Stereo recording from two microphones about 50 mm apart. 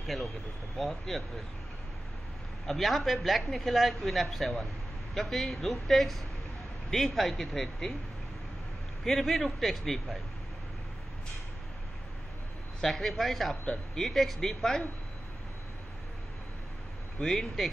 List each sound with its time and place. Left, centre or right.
0.0 s a woman's voice: centre
2.6 s a woman's voice: centre
9.0 s a woman's voice: centre
12.8 s a woman's voice: centre
17.2 s a woman's voice: centre